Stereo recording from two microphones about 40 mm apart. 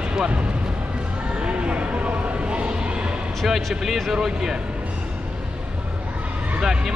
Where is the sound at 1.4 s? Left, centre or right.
Right.